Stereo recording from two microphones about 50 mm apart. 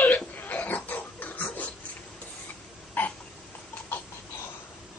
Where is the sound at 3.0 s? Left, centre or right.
Left.